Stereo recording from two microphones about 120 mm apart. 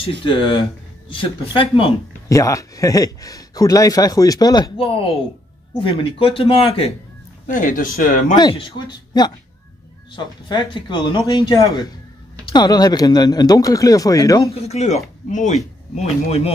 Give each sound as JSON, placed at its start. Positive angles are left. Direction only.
{"t": 0.0, "sound": "speech", "side_deg": 50}
{"t": 2.2, "sound": "speech", "side_deg": 25}
{"t": 4.7, "sound": "speech", "side_deg": 50}
{"t": 7.4, "sound": "speech", "side_deg": 90}
{"t": 8.4, "sound": "speech", "side_deg": 40}
{"t": 14.5, "sound": "speech", "side_deg": 60}
{"t": 15.2, "sound": "speech", "side_deg": 85}